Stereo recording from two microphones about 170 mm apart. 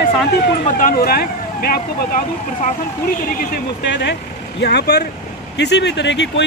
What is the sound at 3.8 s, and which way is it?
Speech, 90° left.